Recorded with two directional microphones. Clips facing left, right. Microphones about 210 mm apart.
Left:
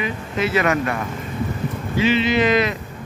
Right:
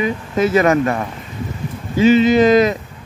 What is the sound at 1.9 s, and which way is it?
Speech, 45° right (ahead or behind).